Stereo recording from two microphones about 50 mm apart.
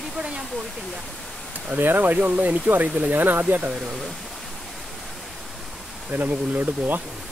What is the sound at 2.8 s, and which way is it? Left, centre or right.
Speech, centre.